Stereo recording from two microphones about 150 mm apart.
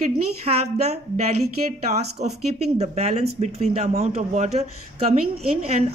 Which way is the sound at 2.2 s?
55° right (ahead or behind).